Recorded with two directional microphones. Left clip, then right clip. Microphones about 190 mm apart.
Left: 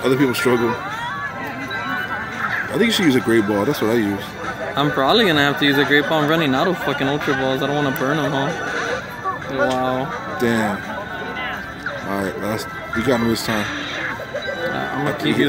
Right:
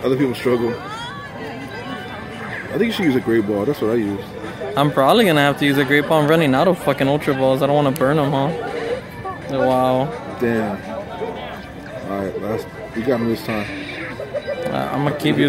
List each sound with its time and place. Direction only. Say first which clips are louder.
0.0 s speech: left 2 dB; 20° left (ahead or behind)
2.8 s speech: left 1 dB; 20° left (ahead or behind)
4.7 s speech: right 2 dB; 40° right (ahead or behind)
9.7 s speech: right 7 dB; 45° right (ahead or behind)
12.1 s music: right 1 dB; 20° left (ahead or behind)
13.0 s speech: left 1 dB; 20° left (ahead or behind)
15.2 s speech: right 1 dB; 45° right (ahead or behind)